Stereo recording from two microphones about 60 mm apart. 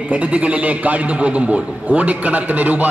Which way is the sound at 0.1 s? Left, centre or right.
Right.